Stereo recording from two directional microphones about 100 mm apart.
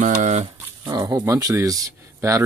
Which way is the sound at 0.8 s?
40° right (ahead or behind).